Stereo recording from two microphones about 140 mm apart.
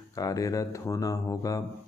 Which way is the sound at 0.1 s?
25° left (ahead or behind).